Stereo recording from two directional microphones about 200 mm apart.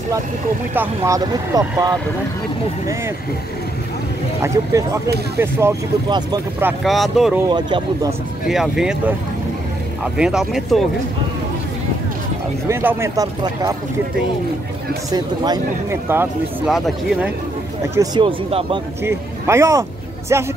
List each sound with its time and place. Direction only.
0.7 s speech: 15° right (ahead or behind)
4.4 s speech: 15° right (ahead or behind)
6.8 s speech: centre (ahead or behind)
7.4 s speech: 20° right (ahead or behind)
8.5 s speech: centre (ahead or behind)
10.1 s speech: 5° right (ahead or behind)
12.6 s speech: 15° right (ahead or behind)
15.0 s speech: 20° right (ahead or behind)
16.7 s speech: centre (ahead or behind)
17.9 s speech: 25° right (ahead or behind)
19.0 s speech: 15° right (ahead or behind)